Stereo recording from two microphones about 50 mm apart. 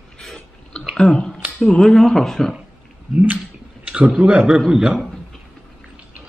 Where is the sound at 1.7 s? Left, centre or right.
Centre.